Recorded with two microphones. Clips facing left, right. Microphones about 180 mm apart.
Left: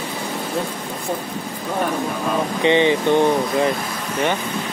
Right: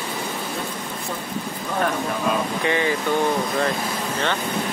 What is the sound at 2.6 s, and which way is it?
Speech, 20° left (ahead or behind).